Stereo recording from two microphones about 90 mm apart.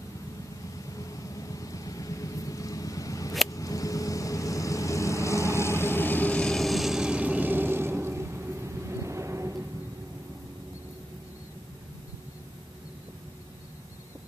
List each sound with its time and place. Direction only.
0.8 s vehicle: 40° left (ahead or behind); by 9.6 s 35° right (ahead or behind)